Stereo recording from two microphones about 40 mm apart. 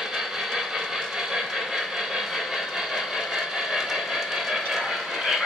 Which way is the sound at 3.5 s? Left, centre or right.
Centre.